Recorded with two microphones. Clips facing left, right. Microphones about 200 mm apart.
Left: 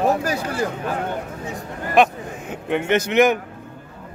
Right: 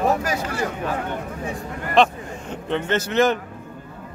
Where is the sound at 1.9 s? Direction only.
10° left (ahead or behind).